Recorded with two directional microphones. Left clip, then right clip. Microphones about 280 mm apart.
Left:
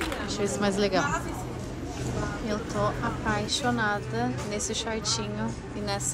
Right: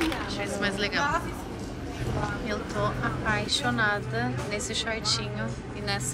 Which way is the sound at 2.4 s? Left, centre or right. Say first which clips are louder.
Left 3 dB; centre.